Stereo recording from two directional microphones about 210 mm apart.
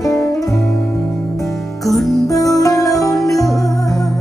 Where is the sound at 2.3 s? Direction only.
15° left (ahead or behind).